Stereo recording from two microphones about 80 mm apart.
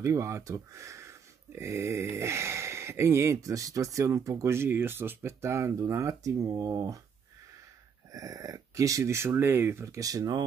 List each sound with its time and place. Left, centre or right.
0.0 s speech: right
8.1 s speech: right
9.9 s speech: right